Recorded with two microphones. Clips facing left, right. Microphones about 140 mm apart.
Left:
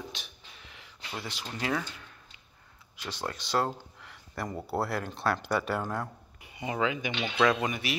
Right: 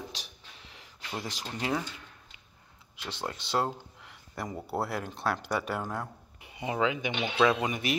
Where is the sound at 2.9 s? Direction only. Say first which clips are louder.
Left 1 dB; 25° right (ahead or behind).